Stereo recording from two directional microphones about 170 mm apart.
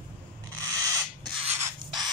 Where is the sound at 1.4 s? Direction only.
15° right (ahead or behind).